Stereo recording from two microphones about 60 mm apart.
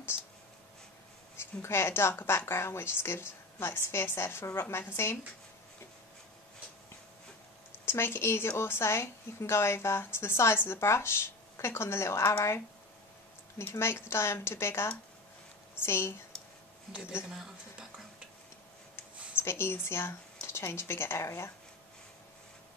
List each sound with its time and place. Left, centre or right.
0.1 s writing: left
1.3 s a woman's voice: left
7.8 s a woman's voice: left
13.7 s a woman's voice: left
17.3 s speech: centre
19.4 s speech: left